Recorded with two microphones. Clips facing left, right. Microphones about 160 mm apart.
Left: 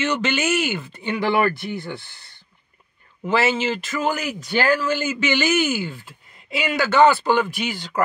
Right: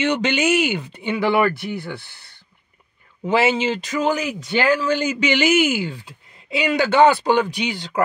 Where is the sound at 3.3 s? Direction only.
15° right (ahead or behind).